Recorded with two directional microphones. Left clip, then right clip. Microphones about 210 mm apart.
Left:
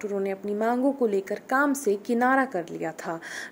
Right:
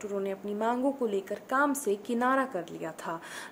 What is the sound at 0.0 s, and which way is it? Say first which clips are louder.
A woman's voice: left 5 dB; 20° left (ahead or behind).